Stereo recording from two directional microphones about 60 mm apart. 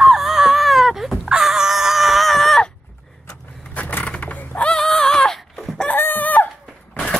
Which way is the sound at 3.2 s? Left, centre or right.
Left.